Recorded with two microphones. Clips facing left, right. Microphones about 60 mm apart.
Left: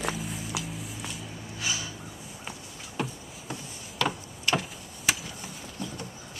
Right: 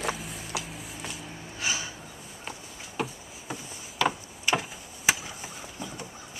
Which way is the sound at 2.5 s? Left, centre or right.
Centre.